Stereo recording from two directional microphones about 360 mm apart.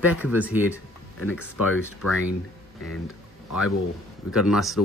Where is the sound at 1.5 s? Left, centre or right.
Left.